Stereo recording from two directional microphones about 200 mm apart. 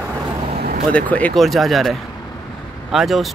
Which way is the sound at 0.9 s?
5° left (ahead or behind).